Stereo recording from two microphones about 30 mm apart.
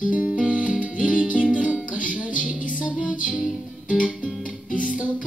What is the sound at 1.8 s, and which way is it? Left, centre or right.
Music, right.